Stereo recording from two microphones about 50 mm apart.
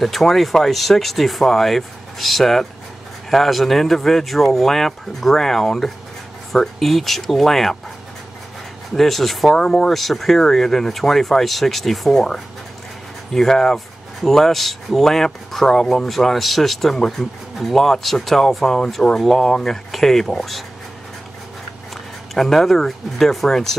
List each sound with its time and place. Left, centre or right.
0.0 s speech: centre
8.9 s speech: centre
9.6 s speech: centre
22.3 s speech: centre